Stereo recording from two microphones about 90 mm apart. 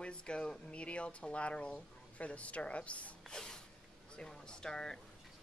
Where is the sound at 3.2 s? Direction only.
5° left (ahead or behind).